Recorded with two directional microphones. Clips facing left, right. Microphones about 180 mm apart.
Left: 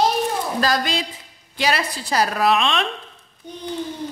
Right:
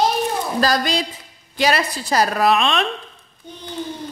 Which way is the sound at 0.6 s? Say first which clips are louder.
Right 4 dB; 40° right (ahead or behind).